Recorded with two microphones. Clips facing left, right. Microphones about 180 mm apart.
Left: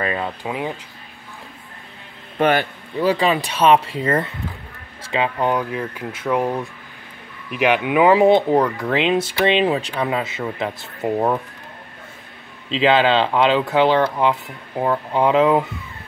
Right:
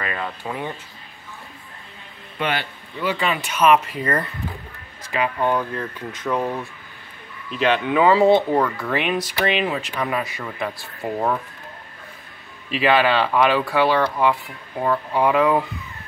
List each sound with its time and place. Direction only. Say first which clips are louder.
0.0 s a sound: left 5 dB; 25° left (ahead or behind)
0.4 s speech: left 3 dB; 15° left (ahead or behind)
2.3 s speech: left 7 dB; 45° left (ahead or behind); by 11.3 s 20° left (ahead or behind)
12.6 s speech: left 2 dB; 20° left (ahead or behind)